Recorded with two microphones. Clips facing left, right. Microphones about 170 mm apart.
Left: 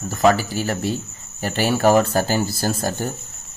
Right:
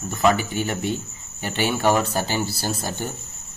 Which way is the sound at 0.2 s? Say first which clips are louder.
Left 3 dB; 35° left (ahead or behind).